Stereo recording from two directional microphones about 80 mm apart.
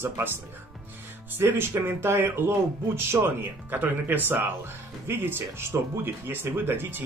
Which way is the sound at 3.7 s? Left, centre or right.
Right.